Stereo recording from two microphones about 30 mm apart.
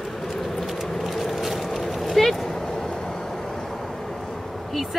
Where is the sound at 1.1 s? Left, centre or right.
Centre.